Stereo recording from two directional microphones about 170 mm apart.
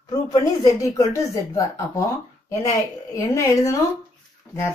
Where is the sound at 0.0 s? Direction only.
20° left (ahead or behind).